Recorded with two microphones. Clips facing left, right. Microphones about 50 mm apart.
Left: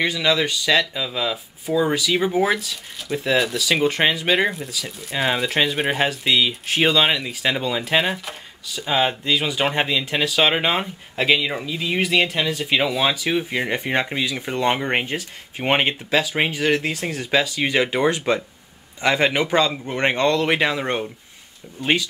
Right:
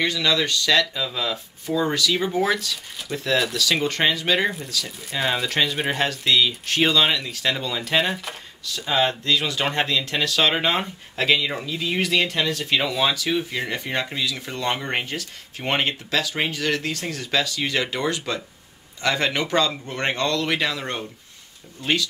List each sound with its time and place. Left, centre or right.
0.0 s a man's voice: centre